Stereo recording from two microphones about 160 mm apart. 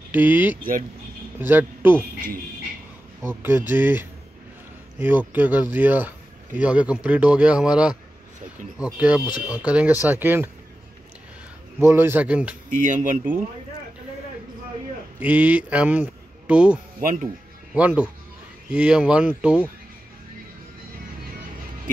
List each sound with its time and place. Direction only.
0.1 s speech: 10° right (ahead or behind)
3.3 s speech: 15° right (ahead or behind)
9.2 s speech: 25° left (ahead or behind)
9.6 s speech: 10° right (ahead or behind)
11.8 s speech: 15° right (ahead or behind)
12.7 s speech: 50° right (ahead or behind)
15.2 s speech: 10° right (ahead or behind)
17.0 s speech: 55° right (ahead or behind)
17.7 s speech: 10° right (ahead or behind)